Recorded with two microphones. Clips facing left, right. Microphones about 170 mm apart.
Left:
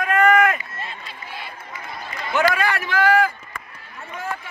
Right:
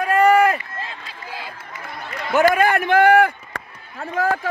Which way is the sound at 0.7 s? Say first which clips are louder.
Right 1 dB; 90° right.